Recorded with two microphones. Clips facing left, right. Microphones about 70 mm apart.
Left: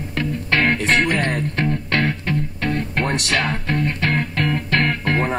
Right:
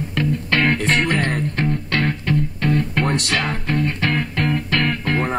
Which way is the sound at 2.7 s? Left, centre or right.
Left.